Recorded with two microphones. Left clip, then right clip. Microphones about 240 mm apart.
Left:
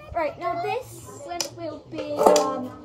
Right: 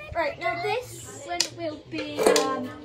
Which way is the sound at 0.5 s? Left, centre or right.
Centre.